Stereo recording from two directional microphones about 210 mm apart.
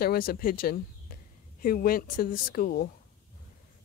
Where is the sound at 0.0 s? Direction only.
45° left (ahead or behind).